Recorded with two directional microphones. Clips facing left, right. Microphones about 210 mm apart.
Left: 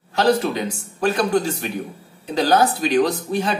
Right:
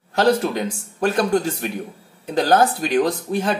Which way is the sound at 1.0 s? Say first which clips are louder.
Even; 50° right (ahead or behind).